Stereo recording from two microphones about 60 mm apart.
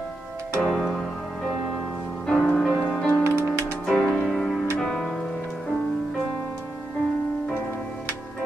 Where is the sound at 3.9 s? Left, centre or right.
Centre.